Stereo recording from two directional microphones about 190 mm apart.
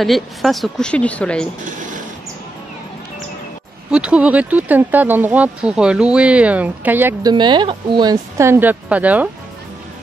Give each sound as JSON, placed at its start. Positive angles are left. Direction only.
{"t": 0.0, "sound": "a woman's voice", "side_deg": 0}
{"t": 1.6, "sound": "a sound", "side_deg": -40}
{"t": 3.9, "sound": "speech", "side_deg": -5}
{"t": 7.3, "sound": "speech", "side_deg": -25}